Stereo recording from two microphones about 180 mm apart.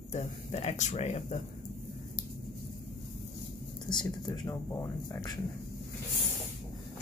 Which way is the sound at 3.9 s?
25° left (ahead or behind).